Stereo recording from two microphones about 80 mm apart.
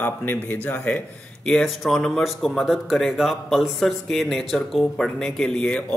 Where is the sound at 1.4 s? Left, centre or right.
Centre.